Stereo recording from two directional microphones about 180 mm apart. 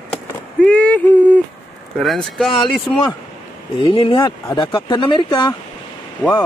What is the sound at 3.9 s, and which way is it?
Speech, 30° left (ahead or behind).